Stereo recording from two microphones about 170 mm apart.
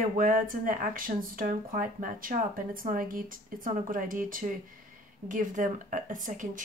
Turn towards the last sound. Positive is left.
turn(degrees=-50)  # may be behind; listen again after turning